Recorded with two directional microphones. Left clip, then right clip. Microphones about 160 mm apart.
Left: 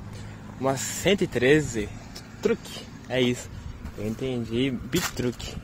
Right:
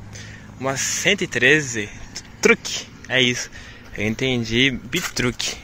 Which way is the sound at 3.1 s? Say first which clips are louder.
Right 7 dB; centre (ahead or behind).